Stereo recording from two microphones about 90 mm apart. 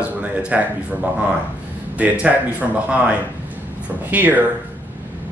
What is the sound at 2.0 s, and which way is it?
Speech, 15° right (ahead or behind).